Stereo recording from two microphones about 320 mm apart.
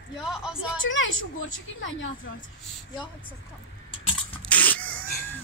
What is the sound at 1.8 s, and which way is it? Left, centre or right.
Speech, left.